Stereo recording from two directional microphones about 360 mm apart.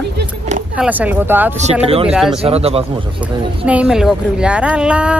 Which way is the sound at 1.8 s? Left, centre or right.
Centre.